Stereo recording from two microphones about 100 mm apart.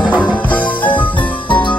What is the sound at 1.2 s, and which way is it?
Music, 55° left (ahead or behind).